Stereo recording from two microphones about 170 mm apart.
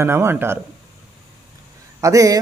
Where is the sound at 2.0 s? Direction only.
20° right (ahead or behind).